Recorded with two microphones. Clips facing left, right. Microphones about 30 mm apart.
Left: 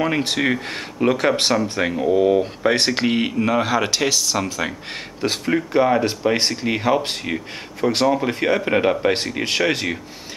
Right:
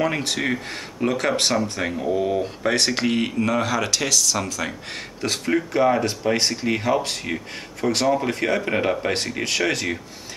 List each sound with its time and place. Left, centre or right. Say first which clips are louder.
0.2 s speech: left 4 dB; left